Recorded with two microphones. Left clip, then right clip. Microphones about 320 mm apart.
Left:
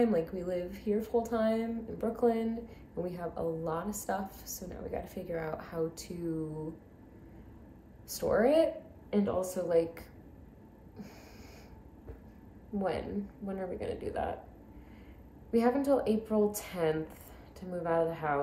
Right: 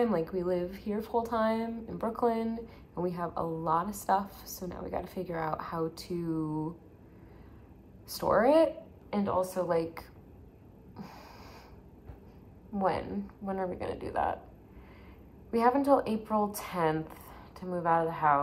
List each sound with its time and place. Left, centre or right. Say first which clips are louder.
0.0 s a woman's voice: right 1 dB; centre
8.1 s a woman's voice: right 2 dB; centre
12.7 s a woman's voice: right 3 dB; centre
15.5 s a woman's voice: right 3 dB; centre